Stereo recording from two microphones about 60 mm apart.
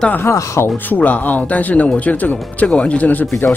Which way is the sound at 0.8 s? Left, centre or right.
Left.